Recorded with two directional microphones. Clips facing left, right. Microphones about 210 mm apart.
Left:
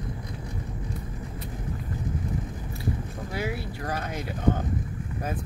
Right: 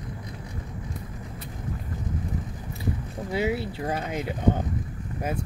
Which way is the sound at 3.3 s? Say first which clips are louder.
Right 6 dB; 20° right (ahead or behind).